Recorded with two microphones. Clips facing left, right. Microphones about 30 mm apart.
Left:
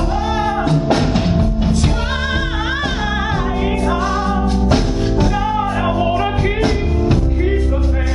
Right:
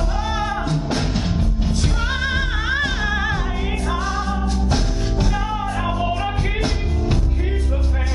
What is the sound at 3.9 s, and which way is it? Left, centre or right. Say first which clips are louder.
Music: left 6 dB; left.